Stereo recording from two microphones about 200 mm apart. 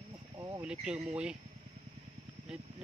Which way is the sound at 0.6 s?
5° right (ahead or behind).